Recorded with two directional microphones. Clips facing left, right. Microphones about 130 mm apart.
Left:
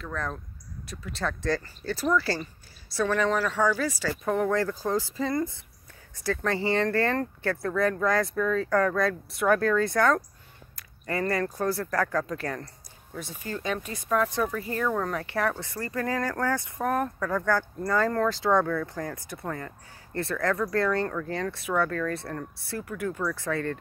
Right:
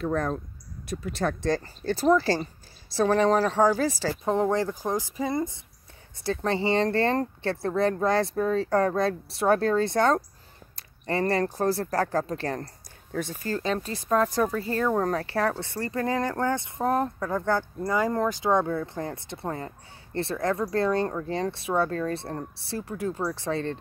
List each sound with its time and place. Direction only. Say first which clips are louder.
0.0 s speech: right 7 dB; 20° right (ahead or behind)
3.1 s speech: right 5 dB; 35° right (ahead or behind)
13.1 s speech: right 6 dB; 50° right (ahead or behind); by 23.8 s 25° right (ahead or behind)